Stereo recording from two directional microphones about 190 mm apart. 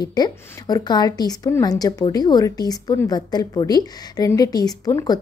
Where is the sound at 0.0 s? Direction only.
20° left (ahead or behind).